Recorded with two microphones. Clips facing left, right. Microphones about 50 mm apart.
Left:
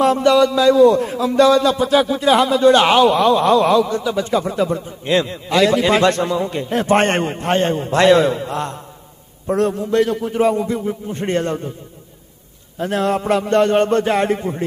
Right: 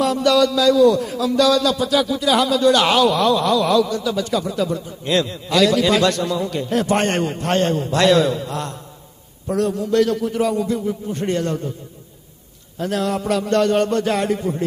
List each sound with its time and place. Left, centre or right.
0.0 s a man's voice: left
12.7 s a man's voice: left